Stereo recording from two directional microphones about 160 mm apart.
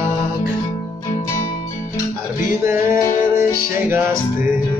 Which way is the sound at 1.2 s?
20° left (ahead or behind).